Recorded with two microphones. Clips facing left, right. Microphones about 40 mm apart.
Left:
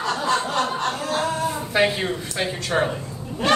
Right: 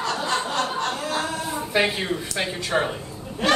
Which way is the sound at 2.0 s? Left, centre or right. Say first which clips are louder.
Left 1 dB; centre.